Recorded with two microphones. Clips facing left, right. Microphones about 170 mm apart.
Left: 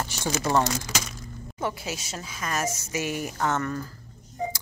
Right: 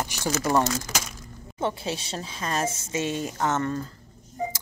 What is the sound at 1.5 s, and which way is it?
Speech, 25° right (ahead or behind).